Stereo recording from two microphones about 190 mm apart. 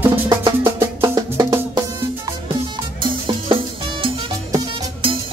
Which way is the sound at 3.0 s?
25° right (ahead or behind).